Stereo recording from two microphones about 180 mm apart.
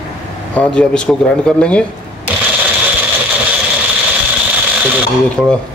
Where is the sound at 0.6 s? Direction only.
5° left (ahead or behind).